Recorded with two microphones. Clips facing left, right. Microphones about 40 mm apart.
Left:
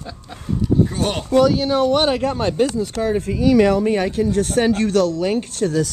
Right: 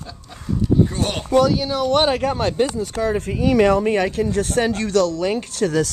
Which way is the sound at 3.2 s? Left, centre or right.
Right.